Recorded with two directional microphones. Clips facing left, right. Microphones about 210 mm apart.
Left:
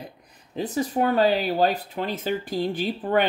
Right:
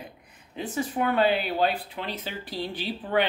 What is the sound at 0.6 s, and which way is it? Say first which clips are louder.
Speech: left 4 dB; 40° left (ahead or behind).